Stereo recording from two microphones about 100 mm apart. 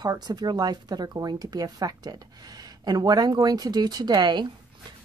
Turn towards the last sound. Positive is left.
turn(degrees=-45)  # may be behind; listen again after turning